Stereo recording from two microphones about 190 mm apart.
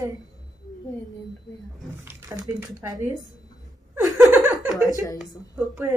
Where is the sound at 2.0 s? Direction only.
10° right (ahead or behind).